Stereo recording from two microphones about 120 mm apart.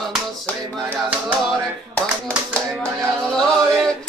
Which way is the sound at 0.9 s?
15° right (ahead or behind).